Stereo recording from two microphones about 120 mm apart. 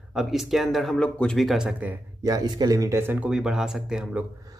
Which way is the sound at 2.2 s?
30° right (ahead or behind).